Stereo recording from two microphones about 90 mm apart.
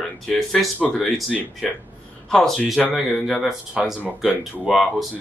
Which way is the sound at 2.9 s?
10° right (ahead or behind).